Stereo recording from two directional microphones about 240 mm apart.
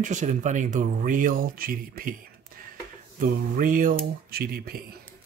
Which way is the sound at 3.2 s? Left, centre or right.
Right.